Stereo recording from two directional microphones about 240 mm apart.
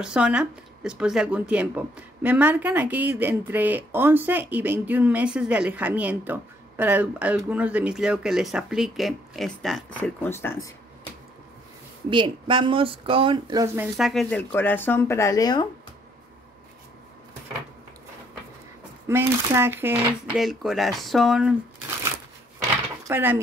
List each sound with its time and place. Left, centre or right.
0.0 s speech: centre
12.1 s speech: centre
13.9 s speech: centre
19.0 s speech: centre
23.0 s speech: centre